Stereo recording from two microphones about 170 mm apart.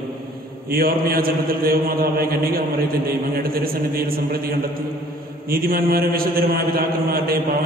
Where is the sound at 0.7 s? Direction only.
60° right (ahead or behind).